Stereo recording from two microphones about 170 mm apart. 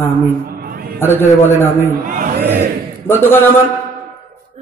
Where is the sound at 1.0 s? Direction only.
15° left (ahead or behind).